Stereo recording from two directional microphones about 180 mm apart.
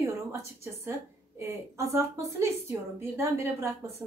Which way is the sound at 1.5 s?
15° right (ahead or behind).